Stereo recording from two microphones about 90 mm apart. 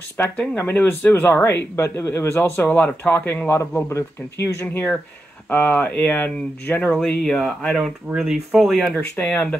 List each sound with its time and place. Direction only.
0.2 s speech: 25° left (ahead or behind); by 8.9 s centre (ahead or behind)
8.9 s speech: 20° left (ahead or behind)